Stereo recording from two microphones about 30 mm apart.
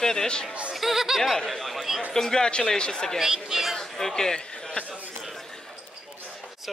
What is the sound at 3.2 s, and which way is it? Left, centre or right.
Speech, centre.